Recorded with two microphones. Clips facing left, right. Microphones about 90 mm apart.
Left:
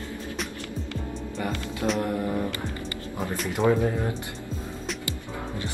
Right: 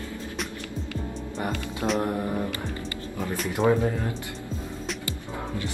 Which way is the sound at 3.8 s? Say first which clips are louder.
Left 1 dB; 20° left (ahead or behind).